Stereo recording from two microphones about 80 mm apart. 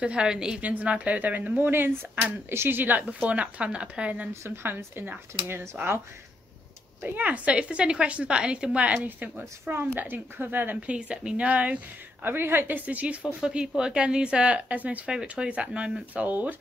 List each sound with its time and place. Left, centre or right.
0.0 s a woman's voice: centre
4.3 s a woman's voice: right
7.0 s a woman's voice: right